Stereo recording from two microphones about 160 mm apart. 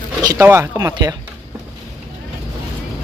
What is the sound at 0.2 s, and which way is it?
Speech, 20° right (ahead or behind).